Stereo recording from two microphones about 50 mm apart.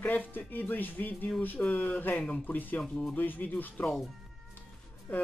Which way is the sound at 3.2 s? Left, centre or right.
Left.